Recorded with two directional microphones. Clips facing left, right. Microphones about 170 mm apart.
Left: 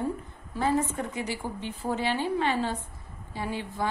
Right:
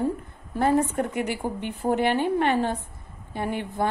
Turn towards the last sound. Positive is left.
turn(degrees=-55)  # may be behind; listen again after turning